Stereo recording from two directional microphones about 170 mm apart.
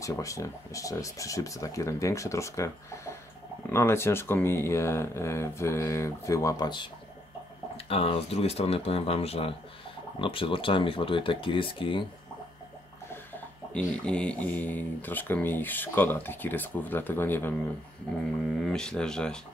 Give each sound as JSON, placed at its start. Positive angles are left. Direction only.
{"t": 0.0, "sound": "speech", "side_deg": 20}
{"t": 14.0, "sound": "speech", "side_deg": 5}
{"t": 18.7, "sound": "speech", "side_deg": 5}